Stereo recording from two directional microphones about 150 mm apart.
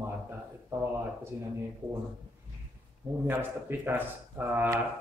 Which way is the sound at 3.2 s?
15° right (ahead or behind).